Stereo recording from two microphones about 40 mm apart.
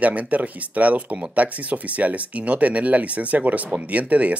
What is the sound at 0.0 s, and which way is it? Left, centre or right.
Speech, right.